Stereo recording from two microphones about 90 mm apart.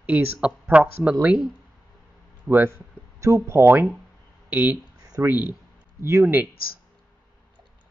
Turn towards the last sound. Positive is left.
turn(degrees=-25)  # may be behind; listen again after turning